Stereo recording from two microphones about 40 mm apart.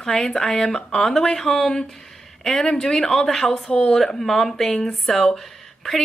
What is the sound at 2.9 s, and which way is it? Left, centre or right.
Speech, centre.